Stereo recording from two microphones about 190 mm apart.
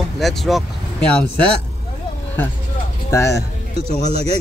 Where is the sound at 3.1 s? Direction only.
15° left (ahead or behind).